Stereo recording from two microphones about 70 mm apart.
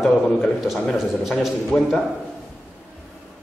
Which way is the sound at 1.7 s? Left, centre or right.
Left.